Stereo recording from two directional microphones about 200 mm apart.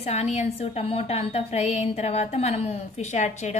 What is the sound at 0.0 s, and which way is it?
A woman's voice, 35° left (ahead or behind).